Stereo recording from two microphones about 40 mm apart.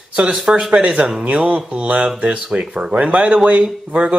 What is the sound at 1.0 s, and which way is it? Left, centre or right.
Speech, right.